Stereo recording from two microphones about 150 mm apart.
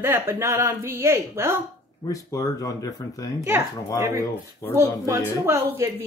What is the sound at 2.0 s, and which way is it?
Speech, 20° left (ahead or behind).